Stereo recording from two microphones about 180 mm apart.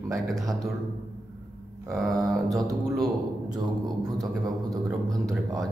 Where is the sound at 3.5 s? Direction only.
20° right (ahead or behind).